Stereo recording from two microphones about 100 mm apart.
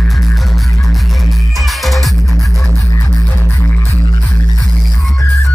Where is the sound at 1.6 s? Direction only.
Centre (ahead or behind).